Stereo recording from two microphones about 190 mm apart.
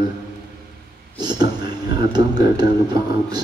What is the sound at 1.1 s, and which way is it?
Speech, 20° right (ahead or behind).